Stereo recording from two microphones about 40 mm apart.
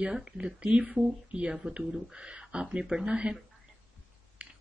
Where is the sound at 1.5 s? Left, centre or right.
Centre.